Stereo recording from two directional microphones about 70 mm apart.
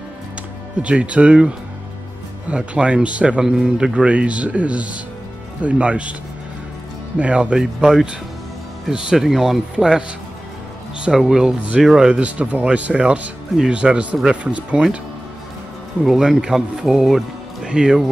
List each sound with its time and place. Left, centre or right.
0.7 s speech: centre
2.5 s speech: centre
7.2 s speech: centre
12.1 s speech: centre
16.0 s speech: centre